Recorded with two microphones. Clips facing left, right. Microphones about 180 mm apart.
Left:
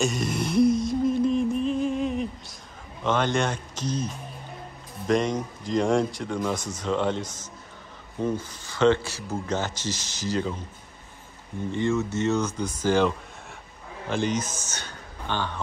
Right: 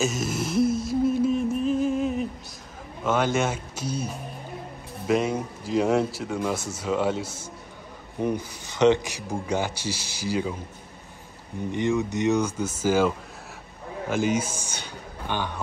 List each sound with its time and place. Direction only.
0.0 s a sound: centre (ahead or behind)
3.0 s speech: 5° right (ahead or behind)
11.7 s a man's voice: 15° right (ahead or behind)